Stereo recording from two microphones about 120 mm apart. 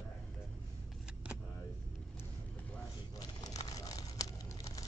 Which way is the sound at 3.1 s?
30° left (ahead or behind).